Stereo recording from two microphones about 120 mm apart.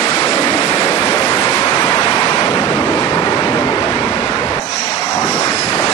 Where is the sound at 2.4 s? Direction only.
45° left (ahead or behind).